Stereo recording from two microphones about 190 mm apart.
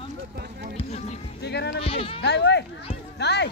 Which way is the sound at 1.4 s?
60° left (ahead or behind).